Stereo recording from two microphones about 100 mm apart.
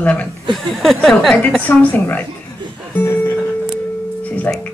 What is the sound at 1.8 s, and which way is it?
Speech, 20° left (ahead or behind).